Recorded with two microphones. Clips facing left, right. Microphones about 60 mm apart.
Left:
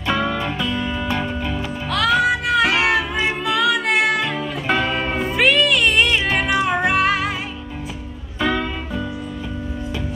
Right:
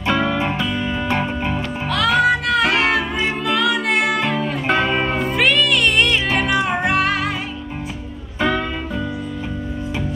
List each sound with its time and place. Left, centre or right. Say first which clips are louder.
0.1 s music: right 2 dB; centre
1.0 s music: right 2 dB; right
1.9 s music: right 1 dB; centre
4.7 s music: right 3 dB; centre
5.1 s music: even; centre
8.4 s music: right 1 dB; centre